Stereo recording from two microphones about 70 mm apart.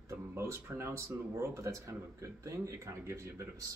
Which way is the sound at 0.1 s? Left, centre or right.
Right.